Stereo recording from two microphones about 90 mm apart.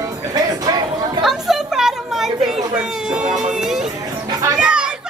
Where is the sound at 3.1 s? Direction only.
10° right (ahead or behind).